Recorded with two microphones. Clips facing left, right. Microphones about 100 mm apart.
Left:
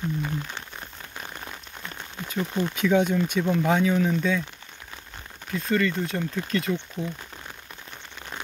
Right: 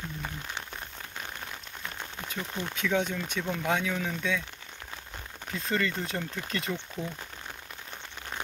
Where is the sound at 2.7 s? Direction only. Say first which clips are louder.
Left 7 dB; 5° left (ahead or behind).